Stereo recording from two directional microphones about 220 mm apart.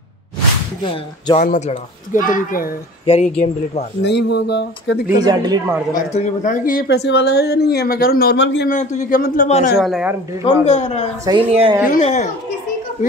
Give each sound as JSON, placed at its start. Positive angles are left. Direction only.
{"t": 0.8, "sound": "speech", "side_deg": 20}
{"t": 1.4, "sound": "speech", "side_deg": 35}
{"t": 4.0, "sound": "speech", "side_deg": 50}
{"t": 5.2, "sound": "speech", "side_deg": -20}
{"t": 6.1, "sound": "speech", "side_deg": 35}
{"t": 8.6, "sound": "speech", "side_deg": 35}
{"t": 9.8, "sound": "speech", "side_deg": 0}
{"t": 10.4, "sound": "speech", "side_deg": 30}
{"t": 11.2, "sound": "speech", "side_deg": -25}
{"t": 11.9, "sound": "speech", "side_deg": 30}